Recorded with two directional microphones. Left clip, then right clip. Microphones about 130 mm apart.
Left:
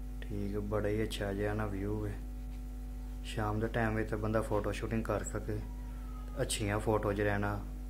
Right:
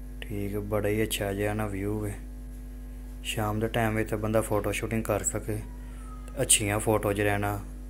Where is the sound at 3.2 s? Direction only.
20° right (ahead or behind).